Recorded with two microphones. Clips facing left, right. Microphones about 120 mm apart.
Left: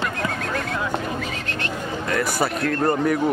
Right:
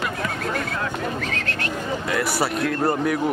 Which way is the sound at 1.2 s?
15° left (ahead or behind).